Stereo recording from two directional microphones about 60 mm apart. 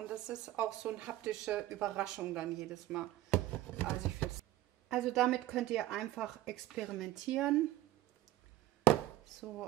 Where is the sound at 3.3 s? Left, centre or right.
Left.